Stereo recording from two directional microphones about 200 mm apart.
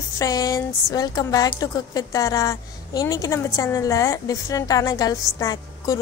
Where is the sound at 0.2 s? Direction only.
20° left (ahead or behind).